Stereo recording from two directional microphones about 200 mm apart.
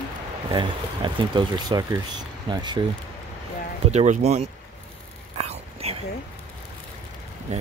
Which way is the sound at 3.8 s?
35° right (ahead or behind).